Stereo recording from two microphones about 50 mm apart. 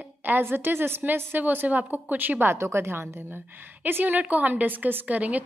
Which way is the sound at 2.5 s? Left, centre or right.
Right.